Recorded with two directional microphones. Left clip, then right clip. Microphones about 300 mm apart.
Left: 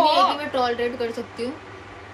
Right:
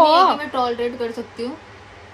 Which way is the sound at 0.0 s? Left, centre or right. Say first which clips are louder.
Right 5 dB; right.